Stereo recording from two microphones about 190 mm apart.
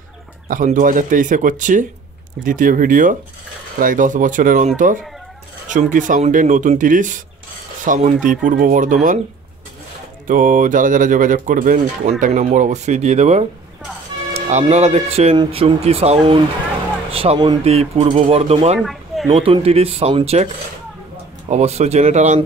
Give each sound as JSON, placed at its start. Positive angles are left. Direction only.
{"t": 0.5, "sound": "speech", "side_deg": -45}
{"t": 5.7, "sound": "speech", "side_deg": -40}
{"t": 10.2, "sound": "speech", "side_deg": -45}
{"t": 18.8, "sound": "a sound", "side_deg": 0}
{"t": 19.3, "sound": "speech", "side_deg": -30}
{"t": 21.5, "sound": "speech", "side_deg": -35}